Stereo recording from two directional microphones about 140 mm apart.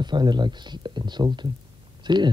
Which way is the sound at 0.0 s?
30° right (ahead or behind).